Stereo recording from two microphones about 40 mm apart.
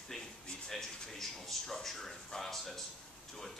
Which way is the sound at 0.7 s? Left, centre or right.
Centre.